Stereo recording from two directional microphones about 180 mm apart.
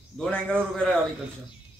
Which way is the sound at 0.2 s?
5° left (ahead or behind).